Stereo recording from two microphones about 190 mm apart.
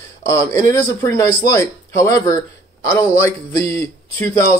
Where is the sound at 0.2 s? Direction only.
15° left (ahead or behind).